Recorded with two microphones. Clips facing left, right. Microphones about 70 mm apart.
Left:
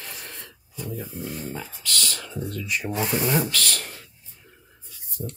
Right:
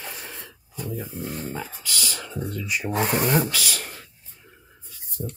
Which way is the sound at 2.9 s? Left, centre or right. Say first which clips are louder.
Right 3 dB; right.